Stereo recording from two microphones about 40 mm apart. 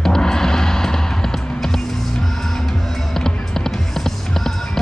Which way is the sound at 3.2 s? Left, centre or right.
Centre.